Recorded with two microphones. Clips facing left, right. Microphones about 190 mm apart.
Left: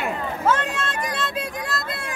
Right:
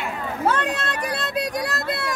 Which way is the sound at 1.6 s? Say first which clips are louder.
Right 3 dB; 75° right (ahead or behind).